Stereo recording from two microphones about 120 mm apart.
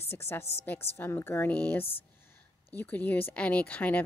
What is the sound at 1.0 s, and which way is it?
Speech, 20° left (ahead or behind).